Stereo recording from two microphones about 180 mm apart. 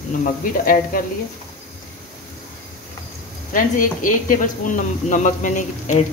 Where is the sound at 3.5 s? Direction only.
45° left (ahead or behind).